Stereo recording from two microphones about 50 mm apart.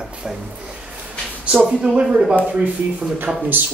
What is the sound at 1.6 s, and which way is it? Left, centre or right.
A man's voice, right.